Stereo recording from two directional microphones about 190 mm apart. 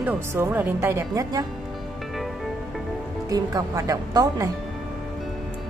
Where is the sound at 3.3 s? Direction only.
20° right (ahead or behind).